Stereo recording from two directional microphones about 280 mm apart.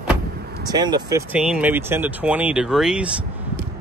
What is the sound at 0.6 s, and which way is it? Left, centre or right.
Speech, centre.